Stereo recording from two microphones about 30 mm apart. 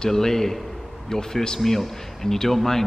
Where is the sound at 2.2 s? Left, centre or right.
Centre.